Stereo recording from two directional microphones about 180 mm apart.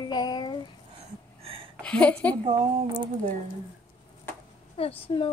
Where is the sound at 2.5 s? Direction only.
30° right (ahead or behind).